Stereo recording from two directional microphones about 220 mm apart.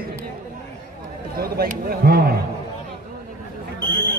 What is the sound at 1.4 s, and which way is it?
Speech, 45° right (ahead or behind).